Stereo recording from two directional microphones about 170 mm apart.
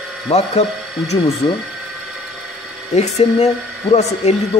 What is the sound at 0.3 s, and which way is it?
Speech, 40° left (ahead or behind).